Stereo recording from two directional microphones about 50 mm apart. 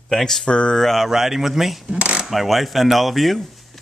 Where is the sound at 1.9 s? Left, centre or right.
Right.